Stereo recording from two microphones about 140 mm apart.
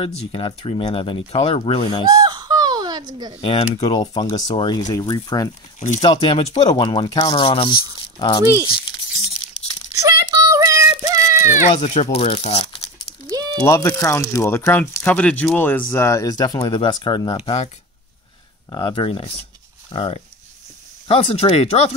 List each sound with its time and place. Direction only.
0.0 s speech: 40° left (ahead or behind)
2.2 s baby cry: 30° right (ahead or behind)
3.4 s speech: 45° left (ahead or behind)
3.9 s speech: 30° left (ahead or behind)
5.8 s speech: 55° left (ahead or behind)
6.0 s speech: 30° left (ahead or behind)
8.6 s tearing: 35° left (ahead or behind)
9.9 s child singing: 25° right (ahead or behind)
11.4 s speech: 60° left (ahead or behind); by 12.8 s 45° left (ahead or behind)
13.3 s a sound: 30° right (ahead or behind)
13.7 s speech: 20° left (ahead or behind)
18.7 s speech: 35° left (ahead or behind)